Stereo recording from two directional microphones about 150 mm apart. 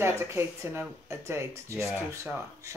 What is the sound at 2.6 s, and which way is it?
Speech, 20° right (ahead or behind).